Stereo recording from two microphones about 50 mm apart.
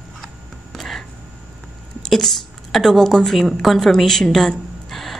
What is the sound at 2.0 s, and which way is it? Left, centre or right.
A woman's voice, centre.